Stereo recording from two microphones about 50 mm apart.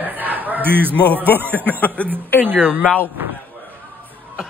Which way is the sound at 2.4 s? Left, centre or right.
Right.